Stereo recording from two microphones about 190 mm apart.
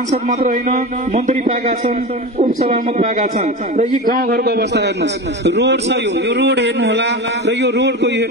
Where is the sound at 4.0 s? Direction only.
50° right (ahead or behind); by 8.3 s 65° right (ahead or behind).